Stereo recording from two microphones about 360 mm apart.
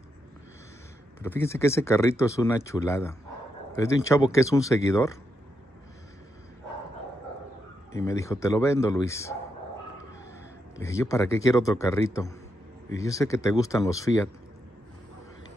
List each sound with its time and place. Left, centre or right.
1.2 s speech: centre
7.9 s speech: centre
10.8 s speech: centre